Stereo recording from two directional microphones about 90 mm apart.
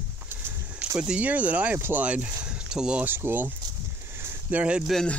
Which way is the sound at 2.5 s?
10° right (ahead or behind).